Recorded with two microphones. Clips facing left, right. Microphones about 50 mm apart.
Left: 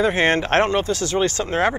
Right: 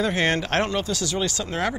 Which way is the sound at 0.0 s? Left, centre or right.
Left.